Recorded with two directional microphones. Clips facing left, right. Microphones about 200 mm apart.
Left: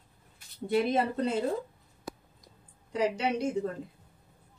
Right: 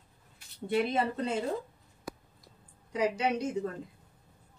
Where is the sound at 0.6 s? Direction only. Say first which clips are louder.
Left 2 dB; 40° left (ahead or behind).